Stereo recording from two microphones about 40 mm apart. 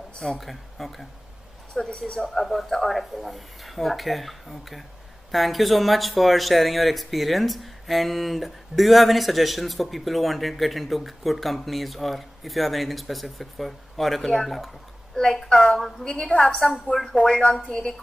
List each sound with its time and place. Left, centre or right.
0.2 s speech: centre
1.8 s a woman's voice: centre